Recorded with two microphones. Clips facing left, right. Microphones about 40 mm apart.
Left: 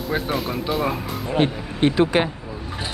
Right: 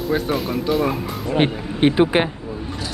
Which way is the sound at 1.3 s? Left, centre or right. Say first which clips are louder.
Right 2 dB; right.